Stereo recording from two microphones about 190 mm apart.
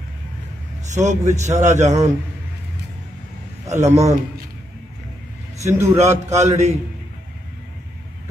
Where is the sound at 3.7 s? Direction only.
35° right (ahead or behind).